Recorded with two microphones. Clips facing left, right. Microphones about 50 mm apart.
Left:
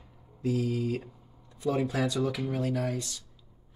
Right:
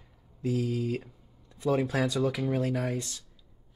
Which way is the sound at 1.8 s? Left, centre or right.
Right.